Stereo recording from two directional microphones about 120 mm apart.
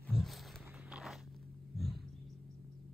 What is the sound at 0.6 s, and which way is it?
Biting, 10° right (ahead or behind).